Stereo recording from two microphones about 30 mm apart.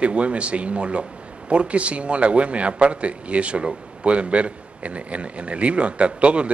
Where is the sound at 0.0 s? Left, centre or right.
Right.